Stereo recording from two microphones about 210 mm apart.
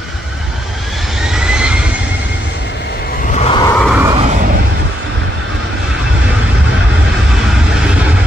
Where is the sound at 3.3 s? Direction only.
30° left (ahead or behind).